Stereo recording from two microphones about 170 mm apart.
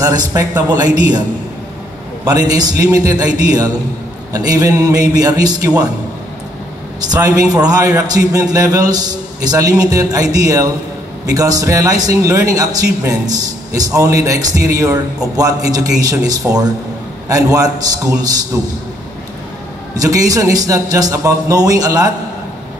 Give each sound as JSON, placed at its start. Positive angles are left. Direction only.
{"t": 0.0, "sound": "a man's voice", "side_deg": -20}
{"t": 2.2, "sound": "a man's voice", "side_deg": -20}
{"t": 7.0, "sound": "a man's voice", "side_deg": -20}
{"t": 20.0, "sound": "a man's voice", "side_deg": -20}